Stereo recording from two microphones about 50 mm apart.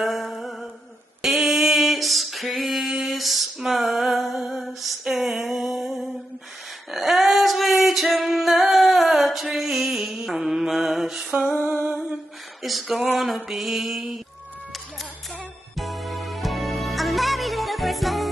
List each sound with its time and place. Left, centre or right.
0.0 s music: centre
1.2 s female singing: centre
4.8 s a sound: centre
6.9 s music: centre
11.6 s humming: right
12.6 s a sound: centre
13.2 s mantra: centre
15.7 s music: centre